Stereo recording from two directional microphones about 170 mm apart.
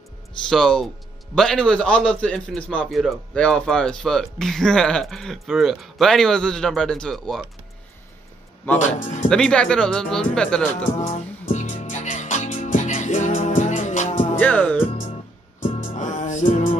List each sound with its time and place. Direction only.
0.5 s speech: 5° left (ahead or behind)
8.7 s speech: 45° left (ahead or behind)
9.3 s speech: 5° left (ahead or behind)
11.0 s music: 45° left (ahead or behind)
14.4 s speech: 10° left (ahead or behind)
16.0 s music: 45° left (ahead or behind)